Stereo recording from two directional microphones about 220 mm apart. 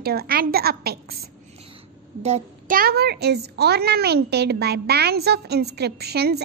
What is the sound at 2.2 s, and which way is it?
A woman's voice, 35° right (ahead or behind).